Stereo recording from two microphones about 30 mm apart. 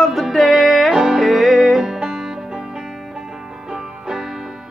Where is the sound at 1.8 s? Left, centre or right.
Centre.